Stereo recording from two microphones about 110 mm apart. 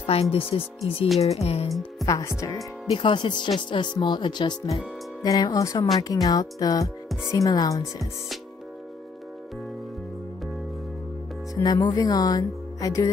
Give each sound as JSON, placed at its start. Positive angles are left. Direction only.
{"t": 0.0, "sound": "speech", "side_deg": 60}
{"t": 1.2, "sound": "music", "side_deg": 70}
{"t": 2.0, "sound": "speech", "side_deg": 30}
{"t": 2.9, "sound": "speech", "side_deg": 50}
{"t": 11.5, "sound": "speech", "side_deg": 35}